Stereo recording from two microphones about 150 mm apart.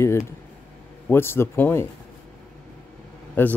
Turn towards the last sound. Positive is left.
turn(degrees=10)  # may be behind; listen again after turning